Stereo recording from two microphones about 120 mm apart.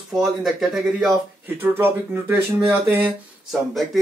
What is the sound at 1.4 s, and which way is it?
Speech, 15° right (ahead or behind).